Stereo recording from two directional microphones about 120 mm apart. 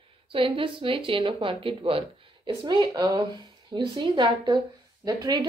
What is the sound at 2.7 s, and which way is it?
A woman's voice, 35° right (ahead or behind).